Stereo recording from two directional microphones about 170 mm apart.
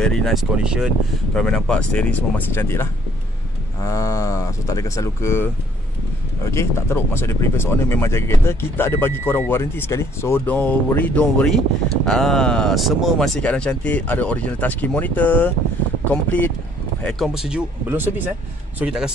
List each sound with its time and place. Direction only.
0.0 s speech: 5° left (ahead or behind)
17.0 s speech: centre (ahead or behind)